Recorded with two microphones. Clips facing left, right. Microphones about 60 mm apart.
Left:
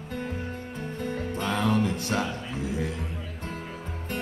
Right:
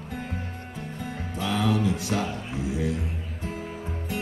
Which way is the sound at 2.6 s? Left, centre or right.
Left.